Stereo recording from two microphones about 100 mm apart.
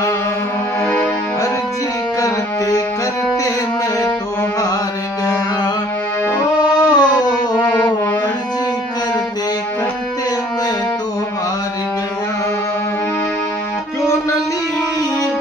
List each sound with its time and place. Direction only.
2.1 s music: 35° left (ahead or behind)
4.0 s music: 30° left (ahead or behind)
5.2 s mantra: 35° left (ahead or behind)
6.6 s music: 45° left (ahead or behind)